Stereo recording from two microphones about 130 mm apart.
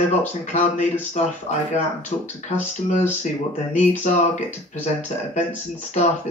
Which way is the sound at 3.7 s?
70° left (ahead or behind).